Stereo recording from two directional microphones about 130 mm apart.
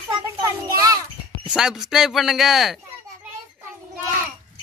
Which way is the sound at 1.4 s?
5° right (ahead or behind).